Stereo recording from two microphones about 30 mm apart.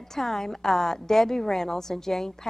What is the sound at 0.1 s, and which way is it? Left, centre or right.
A woman's voice, centre.